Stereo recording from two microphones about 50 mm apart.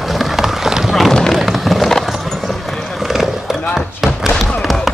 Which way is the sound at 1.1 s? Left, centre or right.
Centre.